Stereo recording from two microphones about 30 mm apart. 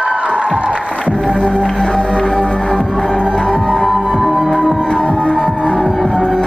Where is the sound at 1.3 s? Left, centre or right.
Left.